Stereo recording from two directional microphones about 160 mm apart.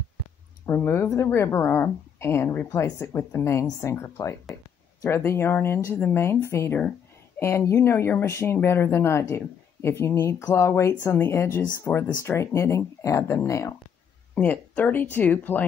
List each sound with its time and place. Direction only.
0.7 s speech: 15° left (ahead or behind)